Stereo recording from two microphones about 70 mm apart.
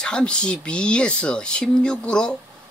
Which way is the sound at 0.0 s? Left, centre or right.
Centre.